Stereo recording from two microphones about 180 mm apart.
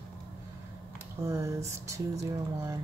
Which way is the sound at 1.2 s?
15° right (ahead or behind).